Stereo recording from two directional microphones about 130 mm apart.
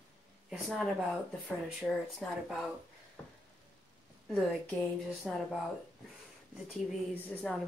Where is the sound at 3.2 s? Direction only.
15° left (ahead or behind).